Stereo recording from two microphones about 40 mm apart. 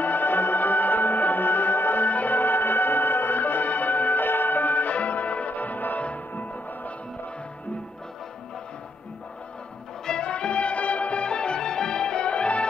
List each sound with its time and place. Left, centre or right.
0.0 s music: left
10.0 s music: left